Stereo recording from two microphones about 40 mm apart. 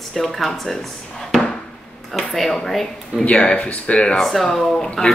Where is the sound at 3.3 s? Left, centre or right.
Left.